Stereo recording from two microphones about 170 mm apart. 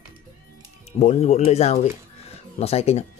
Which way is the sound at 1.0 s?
40° left (ahead or behind).